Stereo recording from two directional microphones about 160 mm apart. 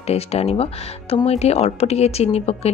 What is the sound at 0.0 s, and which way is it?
Speech, 40° left (ahead or behind).